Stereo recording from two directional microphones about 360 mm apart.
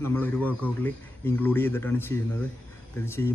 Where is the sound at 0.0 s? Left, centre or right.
Centre.